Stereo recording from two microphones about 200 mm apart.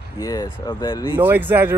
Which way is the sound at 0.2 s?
20° left (ahead or behind).